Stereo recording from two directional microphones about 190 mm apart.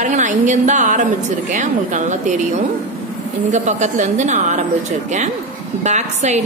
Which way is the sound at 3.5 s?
40° right (ahead or behind).